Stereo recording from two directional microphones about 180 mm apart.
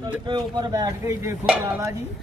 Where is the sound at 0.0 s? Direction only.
25° right (ahead or behind).